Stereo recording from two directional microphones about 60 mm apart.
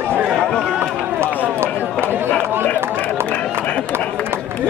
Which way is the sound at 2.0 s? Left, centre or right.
Right.